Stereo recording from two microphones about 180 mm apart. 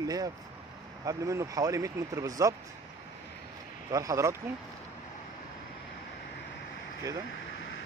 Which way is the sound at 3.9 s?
20° right (ahead or behind).